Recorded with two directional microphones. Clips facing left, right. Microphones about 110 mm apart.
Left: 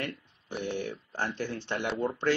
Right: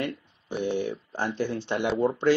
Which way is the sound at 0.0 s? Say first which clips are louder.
Right 5 dB; 20° right (ahead or behind).